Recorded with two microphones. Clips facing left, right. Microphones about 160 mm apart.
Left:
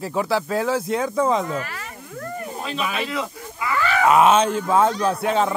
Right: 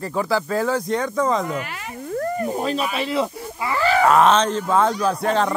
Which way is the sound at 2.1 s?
40° right (ahead or behind).